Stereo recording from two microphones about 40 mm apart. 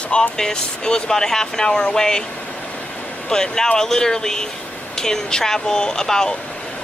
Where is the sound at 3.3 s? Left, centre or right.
Centre.